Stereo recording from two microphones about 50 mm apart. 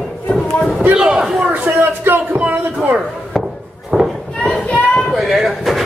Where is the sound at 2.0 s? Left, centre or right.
Right.